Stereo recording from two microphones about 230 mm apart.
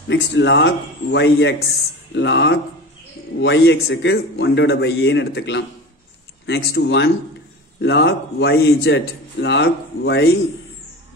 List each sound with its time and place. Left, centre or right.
0.1 s speech: left